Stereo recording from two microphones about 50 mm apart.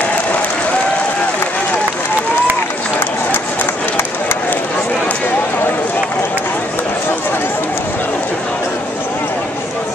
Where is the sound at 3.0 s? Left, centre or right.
Left.